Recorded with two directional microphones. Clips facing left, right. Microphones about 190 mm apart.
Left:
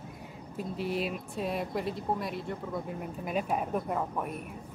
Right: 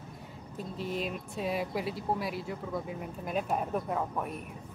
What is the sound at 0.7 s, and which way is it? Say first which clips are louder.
Speech: left 2 dB; 5° left (ahead or behind).